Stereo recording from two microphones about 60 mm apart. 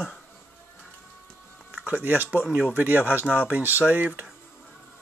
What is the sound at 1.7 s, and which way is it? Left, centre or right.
Speech, right.